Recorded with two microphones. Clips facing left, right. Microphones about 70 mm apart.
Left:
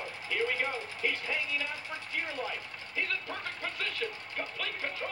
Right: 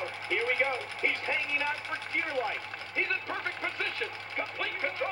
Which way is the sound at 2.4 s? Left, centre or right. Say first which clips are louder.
Right 4 dB; right.